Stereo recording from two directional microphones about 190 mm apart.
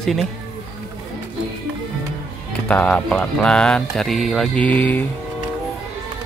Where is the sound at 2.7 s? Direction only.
5° left (ahead or behind).